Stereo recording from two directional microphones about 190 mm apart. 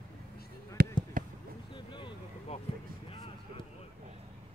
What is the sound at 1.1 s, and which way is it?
Basketball bounce, 45° right (ahead or behind).